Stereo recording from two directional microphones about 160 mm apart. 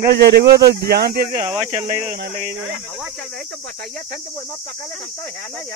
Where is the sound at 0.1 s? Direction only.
90° right.